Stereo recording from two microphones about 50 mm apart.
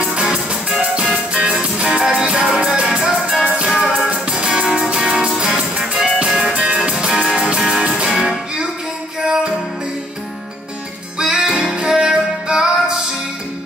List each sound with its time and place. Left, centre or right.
0.0 s music: centre
3.4 s music: centre
3.7 s music: centre
4.1 s music: centre
11.1 s music: centre